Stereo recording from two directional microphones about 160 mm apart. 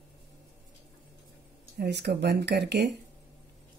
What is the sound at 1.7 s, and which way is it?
Speech, 90° right.